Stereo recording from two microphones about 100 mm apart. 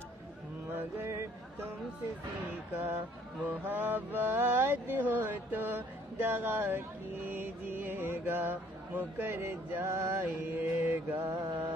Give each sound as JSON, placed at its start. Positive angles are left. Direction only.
{"t": 0.7, "sound": "music", "side_deg": -25}
{"t": 2.7, "sound": "mantra", "side_deg": -20}